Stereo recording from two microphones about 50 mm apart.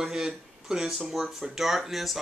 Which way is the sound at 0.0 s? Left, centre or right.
Centre.